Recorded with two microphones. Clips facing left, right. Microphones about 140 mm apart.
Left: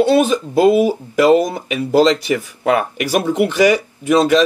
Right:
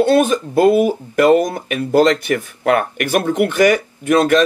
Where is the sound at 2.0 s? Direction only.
55° right (ahead or behind).